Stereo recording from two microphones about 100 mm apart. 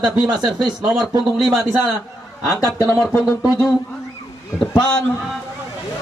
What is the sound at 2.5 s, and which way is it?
Speech, 35° left (ahead or behind).